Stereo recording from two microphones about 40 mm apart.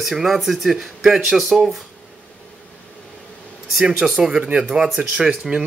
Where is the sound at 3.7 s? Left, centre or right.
Centre.